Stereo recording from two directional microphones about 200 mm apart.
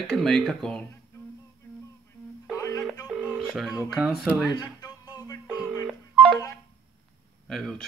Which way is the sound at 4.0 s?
Centre (ahead or behind).